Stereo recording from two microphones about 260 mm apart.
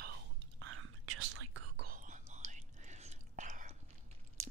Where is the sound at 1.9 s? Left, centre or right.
Right.